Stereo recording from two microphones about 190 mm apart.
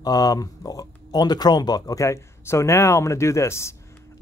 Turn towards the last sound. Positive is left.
turn(degrees=15)  # may be behind; listen again after turning